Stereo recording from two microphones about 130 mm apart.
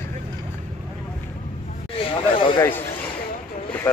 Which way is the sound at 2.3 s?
40° left (ahead or behind).